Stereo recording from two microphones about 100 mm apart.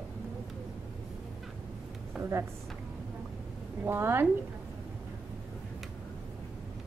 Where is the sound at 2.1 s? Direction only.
Centre (ahead or behind).